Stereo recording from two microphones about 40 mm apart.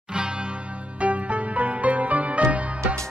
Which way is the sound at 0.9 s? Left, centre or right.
Right.